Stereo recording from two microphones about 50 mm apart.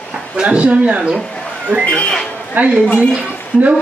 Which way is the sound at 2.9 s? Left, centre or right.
Right.